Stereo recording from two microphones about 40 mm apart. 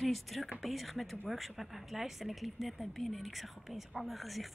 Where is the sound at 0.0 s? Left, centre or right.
Centre.